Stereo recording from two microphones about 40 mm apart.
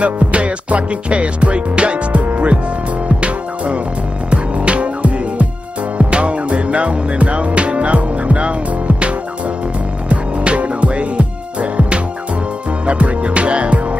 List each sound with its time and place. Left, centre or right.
0.0 s music: right
10.0 s music: right